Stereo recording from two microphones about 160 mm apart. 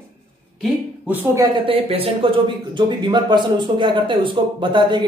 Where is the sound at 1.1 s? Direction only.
20° right (ahead or behind).